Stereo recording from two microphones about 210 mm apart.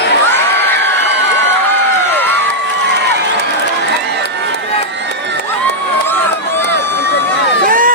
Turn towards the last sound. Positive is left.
turn(degrees=-40)  # may be behind; listen again after turning